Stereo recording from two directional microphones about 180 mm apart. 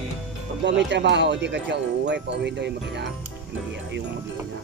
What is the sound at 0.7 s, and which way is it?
Speech, 75° right (ahead or behind).